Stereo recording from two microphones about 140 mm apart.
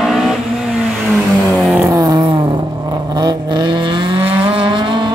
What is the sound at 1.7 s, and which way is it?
Vehicle, 20° right (ahead or behind).